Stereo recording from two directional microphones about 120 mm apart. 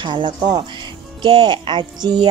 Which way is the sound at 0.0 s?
40° right (ahead or behind).